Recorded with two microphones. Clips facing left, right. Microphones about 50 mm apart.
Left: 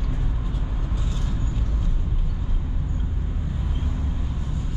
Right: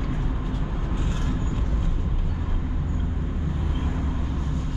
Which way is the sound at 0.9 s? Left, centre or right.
Right.